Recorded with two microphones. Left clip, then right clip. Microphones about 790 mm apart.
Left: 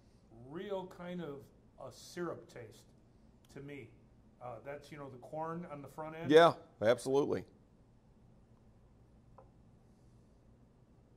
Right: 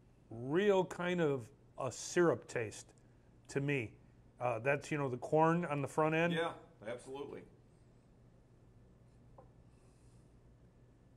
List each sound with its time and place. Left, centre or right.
0.5 s a sound: right
1.8 s speech: right
4.4 s speech: right
6.3 s a man's voice: left